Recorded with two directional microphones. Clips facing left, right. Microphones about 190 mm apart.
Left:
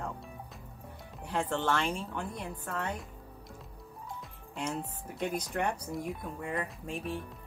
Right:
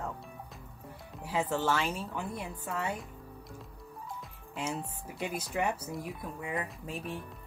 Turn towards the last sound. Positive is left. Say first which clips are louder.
# left 2 dB
turn(degrees=0)  # may be behind; listen again after turning